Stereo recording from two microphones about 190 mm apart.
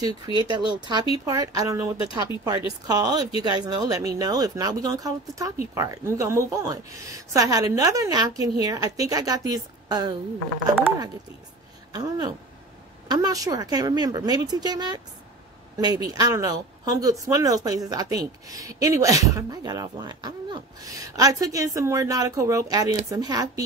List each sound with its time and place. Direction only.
0.4 s a woman's voice: 25° right (ahead or behind)
11.9 s a woman's voice: 20° right (ahead or behind)